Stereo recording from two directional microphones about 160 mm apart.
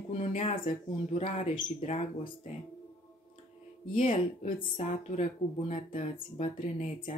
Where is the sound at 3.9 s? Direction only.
35° left (ahead or behind).